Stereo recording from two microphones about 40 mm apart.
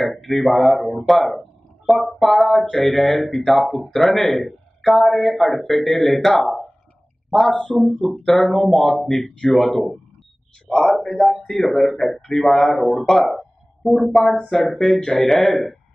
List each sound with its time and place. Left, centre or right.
0.1 s speech: centre
7.4 s speech: centre
8.3 s speech: centre
11.0 s speech: centre